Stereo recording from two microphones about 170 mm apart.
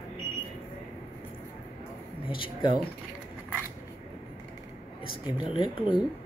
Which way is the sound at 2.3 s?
30° left (ahead or behind).